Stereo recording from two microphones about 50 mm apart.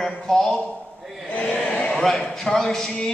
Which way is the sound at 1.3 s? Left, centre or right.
Left.